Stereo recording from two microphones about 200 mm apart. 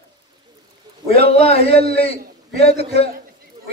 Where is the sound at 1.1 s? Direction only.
30° left (ahead or behind).